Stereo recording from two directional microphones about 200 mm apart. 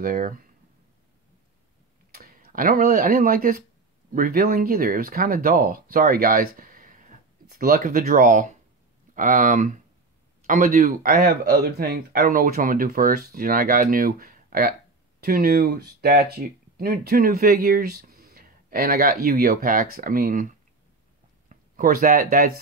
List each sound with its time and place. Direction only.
0.0 s speech: 45° right (ahead or behind)
2.1 s speech: 45° right (ahead or behind)
21.5 s speech: 45° right (ahead or behind)